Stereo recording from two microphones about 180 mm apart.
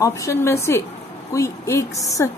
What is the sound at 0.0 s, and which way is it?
A woman's voice, 15° left (ahead or behind).